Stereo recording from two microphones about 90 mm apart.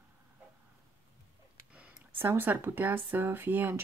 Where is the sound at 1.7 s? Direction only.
15° right (ahead or behind).